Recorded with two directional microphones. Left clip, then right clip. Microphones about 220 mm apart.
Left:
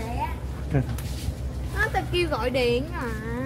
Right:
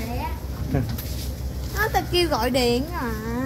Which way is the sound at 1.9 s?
45° right (ahead or behind).